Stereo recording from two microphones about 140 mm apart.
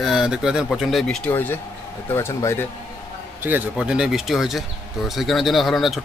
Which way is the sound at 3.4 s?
10° right (ahead or behind).